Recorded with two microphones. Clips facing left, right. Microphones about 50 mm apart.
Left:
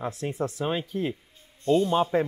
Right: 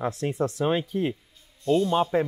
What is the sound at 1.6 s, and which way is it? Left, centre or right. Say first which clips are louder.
Speech: even; left.